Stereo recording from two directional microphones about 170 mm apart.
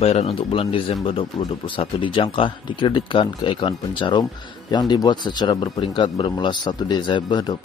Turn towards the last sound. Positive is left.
turn(degrees=25)  # may be behind; listen again after turning